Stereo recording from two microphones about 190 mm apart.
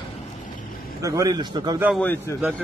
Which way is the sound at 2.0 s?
10° left (ahead or behind).